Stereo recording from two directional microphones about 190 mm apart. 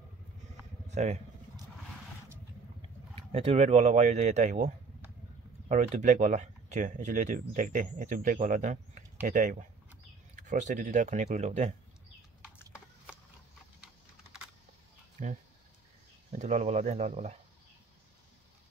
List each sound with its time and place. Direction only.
0.8 s speech: 35° right (ahead or behind)
2.8 s speech: 30° right (ahead or behind)
15.2 s speech: 40° right (ahead or behind)